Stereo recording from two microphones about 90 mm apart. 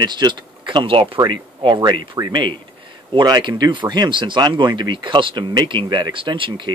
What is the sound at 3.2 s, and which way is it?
Speech, 55° right (ahead or behind).